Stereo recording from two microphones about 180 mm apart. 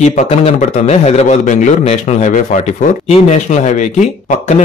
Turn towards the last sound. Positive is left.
turn(degrees=40)  # may be behind; listen again after turning